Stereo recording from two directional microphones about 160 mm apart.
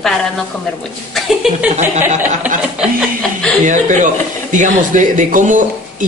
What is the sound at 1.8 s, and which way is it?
Speech, 50° right (ahead or behind).